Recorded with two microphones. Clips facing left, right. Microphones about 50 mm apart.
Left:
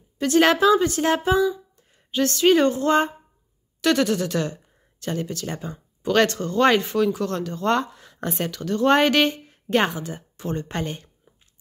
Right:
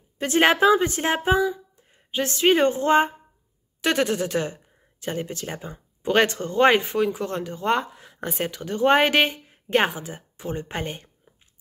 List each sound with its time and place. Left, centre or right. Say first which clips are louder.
0.2 s speech: left 1 dB; right; by 8.5 s centre
8.5 s a woman's voice: left 1 dB; centre